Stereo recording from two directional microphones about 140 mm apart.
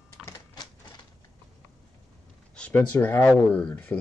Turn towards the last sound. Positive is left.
turn(degrees=10)  # may be behind; listen again after turning